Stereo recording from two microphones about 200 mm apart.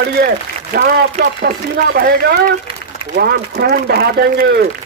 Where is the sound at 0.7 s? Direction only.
45° right (ahead or behind).